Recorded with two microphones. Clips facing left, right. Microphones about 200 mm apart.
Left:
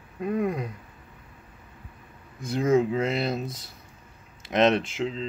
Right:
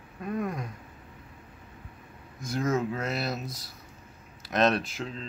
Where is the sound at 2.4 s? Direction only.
30° left (ahead or behind).